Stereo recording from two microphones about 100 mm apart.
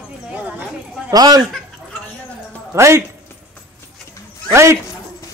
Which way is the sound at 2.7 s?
30° right (ahead or behind).